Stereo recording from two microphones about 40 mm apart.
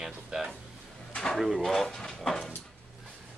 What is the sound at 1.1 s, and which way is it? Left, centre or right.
Drawer open or close, left.